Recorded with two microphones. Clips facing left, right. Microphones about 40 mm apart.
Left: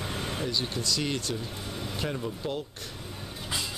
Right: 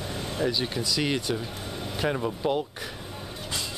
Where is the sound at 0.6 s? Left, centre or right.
Centre.